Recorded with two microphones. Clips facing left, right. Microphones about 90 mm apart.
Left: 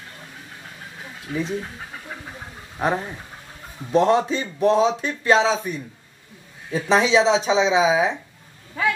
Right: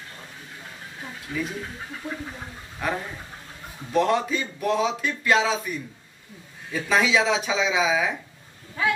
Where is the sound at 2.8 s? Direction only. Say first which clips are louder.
Left 5 dB; 35° left (ahead or behind).